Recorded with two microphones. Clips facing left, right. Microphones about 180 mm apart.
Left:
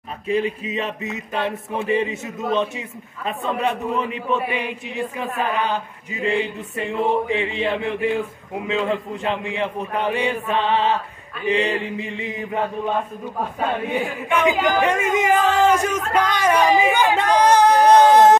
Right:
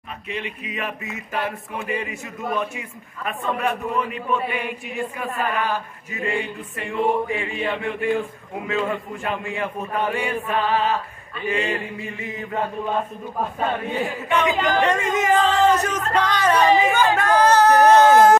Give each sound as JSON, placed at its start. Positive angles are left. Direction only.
{"t": 0.3, "sound": "a man's voice", "side_deg": 30}
{"t": 14.4, "sound": "speech", "side_deg": 15}